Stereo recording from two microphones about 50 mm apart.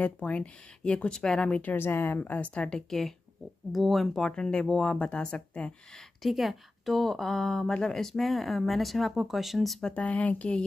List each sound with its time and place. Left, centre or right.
0.0 s speech: left; by 1.4 s centre
1.4 s speech: left
1.8 s speech: left
2.2 s speech: left
2.9 s a woman's voice: centre
4.2 s speech: centre
6.2 s a woman's voice: centre
9.9 s speech: left